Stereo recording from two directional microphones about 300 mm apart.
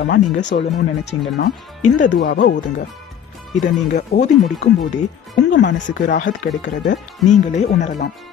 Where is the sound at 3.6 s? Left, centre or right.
Left.